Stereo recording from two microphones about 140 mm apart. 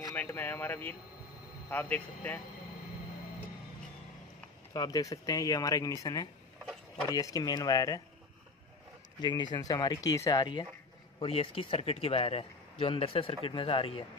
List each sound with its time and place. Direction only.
0.1 s speech: 15° left (ahead or behind)
4.7 s speech: 30° left (ahead or behind)
9.2 s speech: 30° left (ahead or behind)
11.1 s speech: 45° left (ahead or behind)